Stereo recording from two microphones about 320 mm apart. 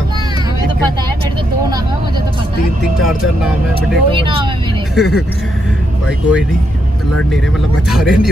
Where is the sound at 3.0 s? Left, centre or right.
Centre.